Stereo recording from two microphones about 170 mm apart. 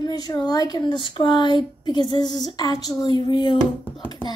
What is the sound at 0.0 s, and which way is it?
A woman's voice, 25° left (ahead or behind).